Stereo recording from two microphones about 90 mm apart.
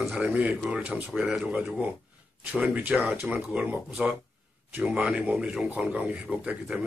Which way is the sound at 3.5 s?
5° right (ahead or behind).